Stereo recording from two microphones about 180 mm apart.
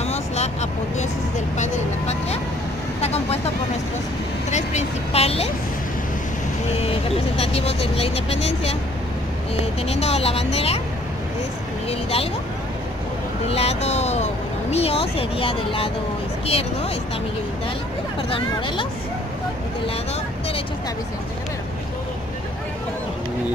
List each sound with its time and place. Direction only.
0.0 s vehicle: 35° left (ahead or behind)
4.5 s vehicle: 40° left (ahead or behind)
6.8 s vehicle: 35° left (ahead or behind)
9.8 s speech: 35° left (ahead or behind)
11.9 s speech: 35° left (ahead or behind)
13.5 s speech: 35° left (ahead or behind)